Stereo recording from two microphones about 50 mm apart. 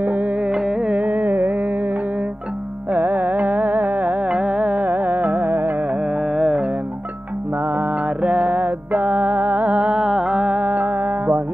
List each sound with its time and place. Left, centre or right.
0.0 s carnatic music: right
0.4 s carnatic music: centre
0.8 s carnatic music: right
4.3 s carnatic music: centre
4.6 s carnatic music: right
6.1 s carnatic music: centre
7.6 s mantra: right
9.8 s music: centre
10.5 s music: right